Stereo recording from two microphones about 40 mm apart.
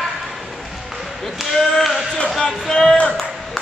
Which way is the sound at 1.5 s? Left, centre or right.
Centre.